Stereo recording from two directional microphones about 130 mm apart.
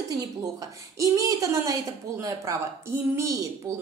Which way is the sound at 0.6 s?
25° right (ahead or behind).